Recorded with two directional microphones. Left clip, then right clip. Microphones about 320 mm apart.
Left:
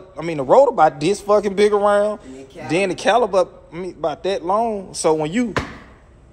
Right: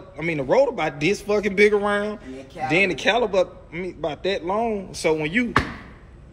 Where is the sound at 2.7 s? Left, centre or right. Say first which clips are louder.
Even; left.